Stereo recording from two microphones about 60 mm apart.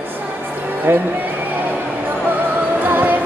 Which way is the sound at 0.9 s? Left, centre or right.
Right.